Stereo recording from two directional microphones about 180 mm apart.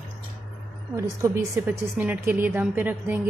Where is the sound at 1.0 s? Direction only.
15° right (ahead or behind).